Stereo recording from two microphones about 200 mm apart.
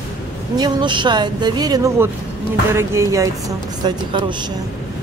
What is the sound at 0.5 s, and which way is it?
A woman's voice, 20° right (ahead or behind).